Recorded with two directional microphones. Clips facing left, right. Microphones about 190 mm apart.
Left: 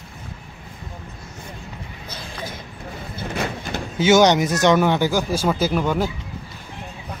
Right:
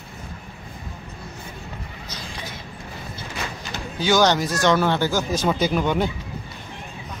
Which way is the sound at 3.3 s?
55° left (ahead or behind).